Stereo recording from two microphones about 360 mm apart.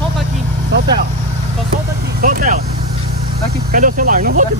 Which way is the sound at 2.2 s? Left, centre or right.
Right.